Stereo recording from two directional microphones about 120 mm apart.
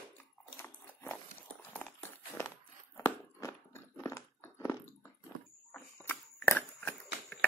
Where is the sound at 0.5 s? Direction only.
20° left (ahead or behind).